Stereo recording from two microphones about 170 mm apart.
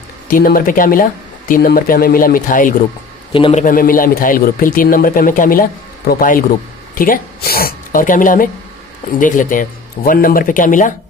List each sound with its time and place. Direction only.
0.3 s speech: 55° left (ahead or behind)
3.3 s a man's voice: 30° left (ahead or behind)
3.6 s speech: 55° left (ahead or behind)